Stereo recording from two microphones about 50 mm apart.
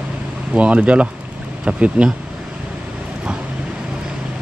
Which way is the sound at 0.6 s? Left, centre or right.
Right.